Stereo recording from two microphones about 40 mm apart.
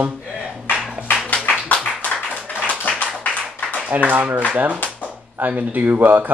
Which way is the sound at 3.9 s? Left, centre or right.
Right.